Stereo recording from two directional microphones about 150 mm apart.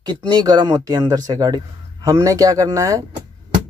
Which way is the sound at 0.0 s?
30° right (ahead or behind).